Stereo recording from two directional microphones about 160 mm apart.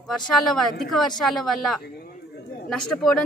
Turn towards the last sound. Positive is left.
turn(degrees=5)  # may be behind; listen again after turning